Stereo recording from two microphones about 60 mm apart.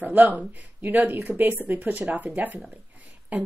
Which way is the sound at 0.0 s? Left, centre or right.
Right.